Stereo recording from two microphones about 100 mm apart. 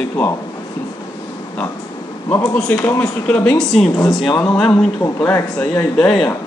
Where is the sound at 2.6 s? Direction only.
15° left (ahead or behind).